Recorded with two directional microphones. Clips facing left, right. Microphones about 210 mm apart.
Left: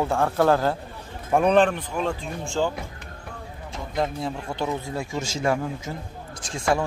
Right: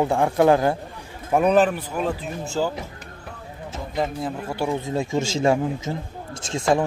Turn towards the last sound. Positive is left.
turn(degrees=-20)  # may be behind; listen again after turning